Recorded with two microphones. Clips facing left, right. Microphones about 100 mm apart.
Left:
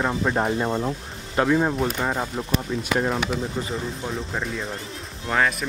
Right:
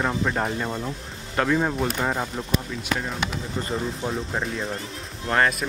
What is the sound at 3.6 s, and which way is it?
Speech, 5° left (ahead or behind).